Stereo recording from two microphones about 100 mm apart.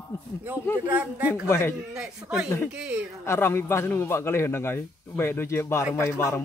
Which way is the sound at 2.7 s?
10° right (ahead or behind).